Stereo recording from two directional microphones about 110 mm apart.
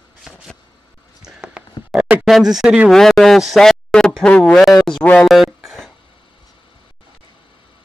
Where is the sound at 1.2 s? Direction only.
5° right (ahead or behind).